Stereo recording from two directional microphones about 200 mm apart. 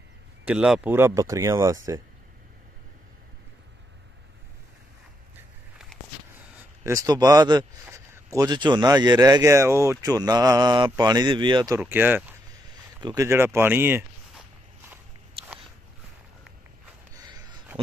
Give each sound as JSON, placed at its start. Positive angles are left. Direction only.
{"t": 0.5, "sound": "speech", "side_deg": -5}
{"t": 6.6, "sound": "speech", "side_deg": -15}
{"t": 11.8, "sound": "speech", "side_deg": -10}
{"t": 17.1, "sound": "a sound", "side_deg": -20}